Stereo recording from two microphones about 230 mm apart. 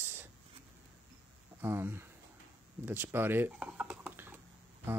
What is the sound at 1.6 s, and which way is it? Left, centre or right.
Speech, centre.